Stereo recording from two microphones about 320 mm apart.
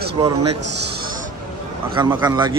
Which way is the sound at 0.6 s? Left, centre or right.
Right.